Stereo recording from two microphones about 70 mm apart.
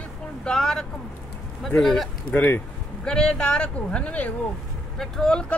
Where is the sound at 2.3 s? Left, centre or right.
Left.